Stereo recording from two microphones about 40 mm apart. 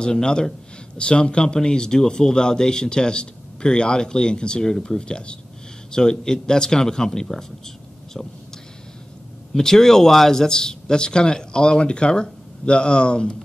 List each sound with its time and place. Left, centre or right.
0.0 s speech: centre
9.5 s speech: centre